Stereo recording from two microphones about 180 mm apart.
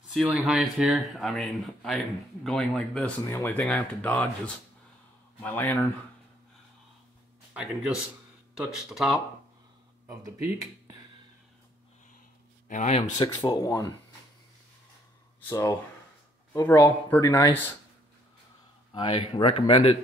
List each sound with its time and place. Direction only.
0.1 s speech: centre (ahead or behind)
3.3 s speech: 15° left (ahead or behind)
3.6 s speech: centre (ahead or behind)
5.4 s speech: 10° left (ahead or behind)
7.5 s speech: 5° right (ahead or behind)
10.0 s speech: 15° right (ahead or behind)
12.6 s speech: 40° left (ahead or behind)
13.2 s speech: 20° left (ahead or behind)
15.5 s speech: 15° left (ahead or behind)
18.9 s speech: 30° left (ahead or behind)